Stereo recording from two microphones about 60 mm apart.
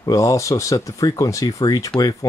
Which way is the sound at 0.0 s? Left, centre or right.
Left.